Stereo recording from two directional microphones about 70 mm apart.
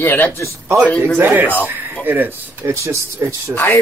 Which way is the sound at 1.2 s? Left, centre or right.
Right.